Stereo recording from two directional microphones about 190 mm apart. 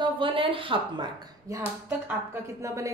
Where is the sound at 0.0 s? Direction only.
25° right (ahead or behind).